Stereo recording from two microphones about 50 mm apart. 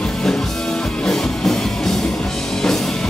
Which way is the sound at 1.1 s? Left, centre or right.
Centre.